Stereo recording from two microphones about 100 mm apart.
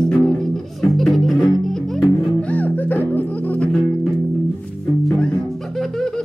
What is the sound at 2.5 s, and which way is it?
Music, 15° left (ahead or behind).